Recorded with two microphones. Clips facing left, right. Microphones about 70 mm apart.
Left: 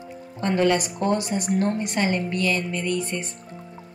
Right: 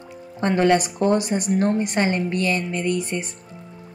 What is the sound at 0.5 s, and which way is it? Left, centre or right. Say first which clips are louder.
A woman's voice: right 3 dB; right.